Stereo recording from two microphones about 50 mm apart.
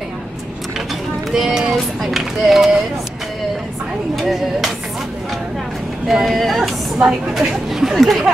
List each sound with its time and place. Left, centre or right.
1.3 s speech: centre
4.1 s speech: centre
6.0 s speech: centre
7.0 s a woman's voice: centre